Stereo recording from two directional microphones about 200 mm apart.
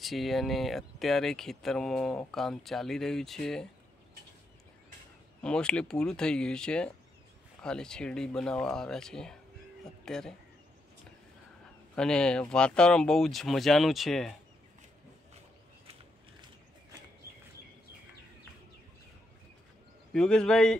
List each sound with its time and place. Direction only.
0.0 s speech: centre (ahead or behind)
5.4 s speech: 5° left (ahead or behind)
11.9 s speech: 5° left (ahead or behind)
20.1 s speech: 5° left (ahead or behind)